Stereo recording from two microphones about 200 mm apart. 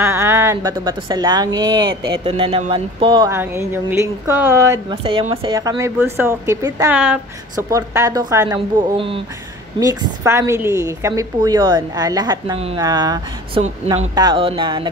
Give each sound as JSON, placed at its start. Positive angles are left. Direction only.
{"t": 0.0, "sound": "a woman's voice", "side_deg": -15}
{"t": 3.3, "sound": "a woman's voice", "side_deg": -10}
{"t": 5.0, "sound": "a woman's voice", "side_deg": -25}
{"t": 9.8, "sound": "a woman's voice", "side_deg": -15}